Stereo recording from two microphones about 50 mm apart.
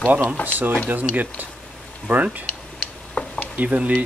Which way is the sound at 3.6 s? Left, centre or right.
Right.